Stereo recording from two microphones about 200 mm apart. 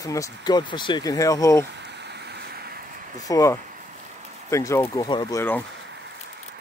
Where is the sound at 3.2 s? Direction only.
15° left (ahead or behind).